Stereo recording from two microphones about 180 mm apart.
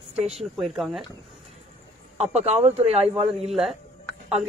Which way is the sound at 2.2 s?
35° right (ahead or behind).